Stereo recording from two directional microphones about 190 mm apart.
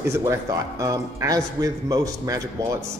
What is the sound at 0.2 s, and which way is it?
A man's voice, 15° right (ahead or behind).